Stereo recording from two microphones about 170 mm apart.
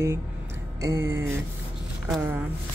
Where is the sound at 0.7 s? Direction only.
15° right (ahead or behind).